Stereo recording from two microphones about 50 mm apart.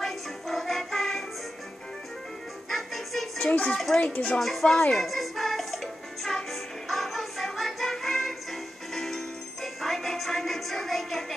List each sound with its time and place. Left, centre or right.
0.0 s music: centre
2.7 s music: centre
3.3 s speech: centre
4.4 s speech: centre
4.9 s music: centre
8.9 s jingle bell: centre